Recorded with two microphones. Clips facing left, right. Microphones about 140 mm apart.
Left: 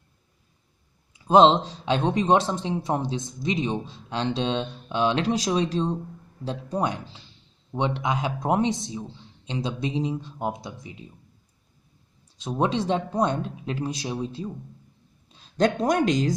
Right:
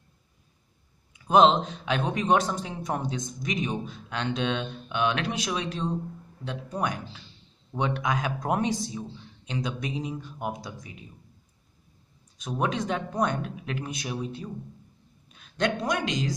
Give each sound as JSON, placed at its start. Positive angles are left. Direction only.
{"t": 1.1, "sound": "a man's voice", "side_deg": 30}
{"t": 12.4, "sound": "a man's voice", "side_deg": 30}